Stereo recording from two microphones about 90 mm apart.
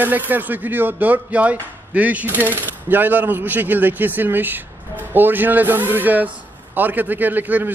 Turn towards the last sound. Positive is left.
turn(degrees=-20)  # may be behind; listen again after turning